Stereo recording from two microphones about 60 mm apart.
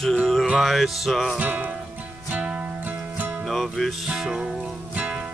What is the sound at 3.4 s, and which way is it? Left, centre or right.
Music, centre.